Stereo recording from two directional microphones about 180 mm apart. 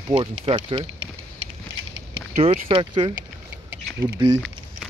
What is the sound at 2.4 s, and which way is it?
Speech, 30° right (ahead or behind).